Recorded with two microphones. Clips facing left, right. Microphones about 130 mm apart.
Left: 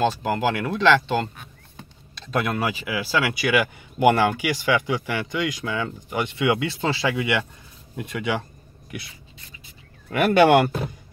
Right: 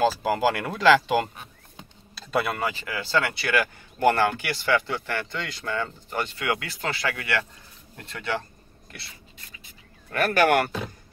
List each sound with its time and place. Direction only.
0.0 s speech: 5° right (ahead or behind)
2.1 s a sound: 5° right (ahead or behind)
2.6 s speech: 10° left (ahead or behind)
10.1 s speech: 20° left (ahead or behind)